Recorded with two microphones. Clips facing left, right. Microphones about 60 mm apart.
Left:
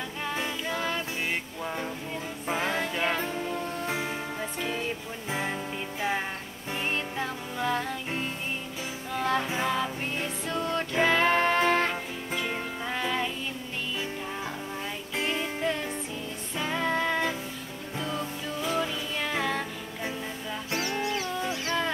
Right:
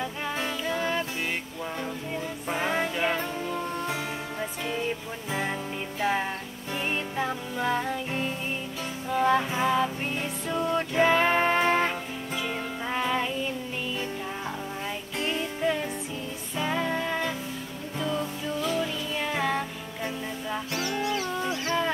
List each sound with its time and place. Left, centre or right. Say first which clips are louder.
0.7 s music: right 3 dB; centre
2.4 s music: right 1 dB; centre
5.9 s music: right 3 dB; centre
6.9 s music: right 3 dB; centre
9.1 s music: right 4 dB; centre
15.1 s music: even; centre
15.6 s music: right 2 dB; centre
20.7 s music: even; left